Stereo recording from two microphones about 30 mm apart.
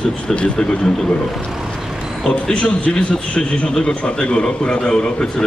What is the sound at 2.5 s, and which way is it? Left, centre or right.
A man's voice, left.